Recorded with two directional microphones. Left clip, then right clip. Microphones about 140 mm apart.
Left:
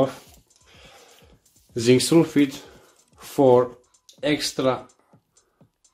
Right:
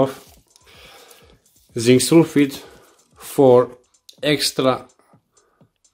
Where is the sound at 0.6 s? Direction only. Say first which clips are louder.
Right 5 dB; 30° right (ahead or behind).